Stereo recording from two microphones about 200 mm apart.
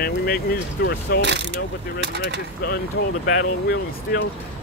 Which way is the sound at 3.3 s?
50° left (ahead or behind).